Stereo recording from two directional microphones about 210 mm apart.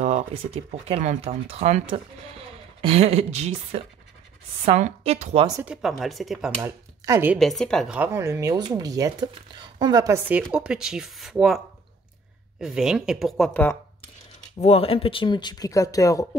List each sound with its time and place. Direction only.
0.0 s speech: 30° right (ahead or behind)
5.5 s speech: 10° right (ahead or behind)
7.3 s speech: centre (ahead or behind)
14.6 s speech: 30° left (ahead or behind)